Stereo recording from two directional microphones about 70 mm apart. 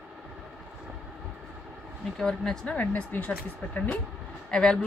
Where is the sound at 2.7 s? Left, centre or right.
Left.